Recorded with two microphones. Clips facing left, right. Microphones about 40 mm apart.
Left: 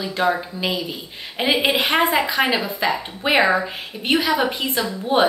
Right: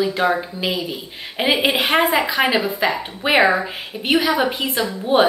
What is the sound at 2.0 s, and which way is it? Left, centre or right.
A woman's voice, centre.